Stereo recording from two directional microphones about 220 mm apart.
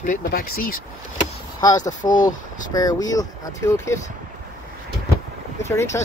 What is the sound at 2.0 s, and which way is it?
Speech, 35° left (ahead or behind).